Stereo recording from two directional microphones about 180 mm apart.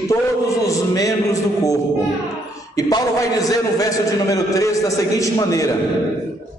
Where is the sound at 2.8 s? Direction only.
20° left (ahead or behind).